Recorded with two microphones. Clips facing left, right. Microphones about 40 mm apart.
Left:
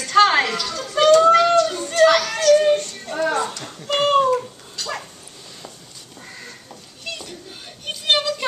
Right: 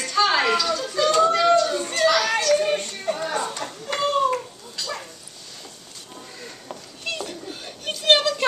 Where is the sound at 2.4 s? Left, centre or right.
Left.